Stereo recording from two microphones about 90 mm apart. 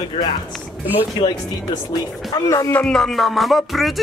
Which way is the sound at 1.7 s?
45° left (ahead or behind).